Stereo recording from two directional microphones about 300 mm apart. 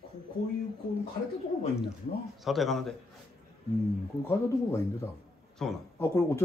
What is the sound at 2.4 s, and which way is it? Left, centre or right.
Speech, centre.